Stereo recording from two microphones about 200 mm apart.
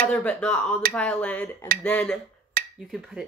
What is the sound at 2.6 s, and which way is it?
Finger snapping, 45° right (ahead or behind).